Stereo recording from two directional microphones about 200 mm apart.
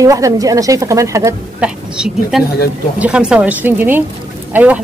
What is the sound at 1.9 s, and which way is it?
Speech, 5° right (ahead or behind).